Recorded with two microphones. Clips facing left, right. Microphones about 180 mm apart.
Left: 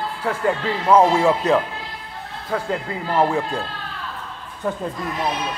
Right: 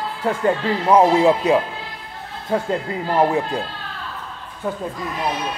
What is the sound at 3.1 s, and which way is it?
Speech, 15° right (ahead or behind).